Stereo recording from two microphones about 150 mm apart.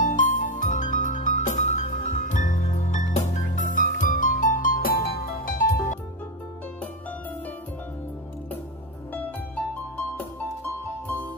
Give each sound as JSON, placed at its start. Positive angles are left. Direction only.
{"t": 0.0, "sound": "music", "side_deg": 60}
{"t": 9.9, "sound": "music", "side_deg": 15}